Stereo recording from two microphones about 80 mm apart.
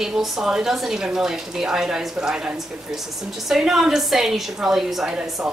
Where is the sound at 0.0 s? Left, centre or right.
Centre.